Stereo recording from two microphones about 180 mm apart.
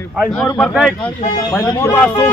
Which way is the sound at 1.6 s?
20° left (ahead or behind).